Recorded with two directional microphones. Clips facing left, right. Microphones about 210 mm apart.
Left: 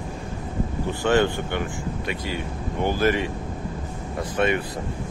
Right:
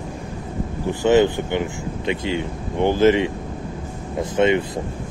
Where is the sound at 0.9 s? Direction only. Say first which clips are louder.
Right 5 dB; 15° right (ahead or behind).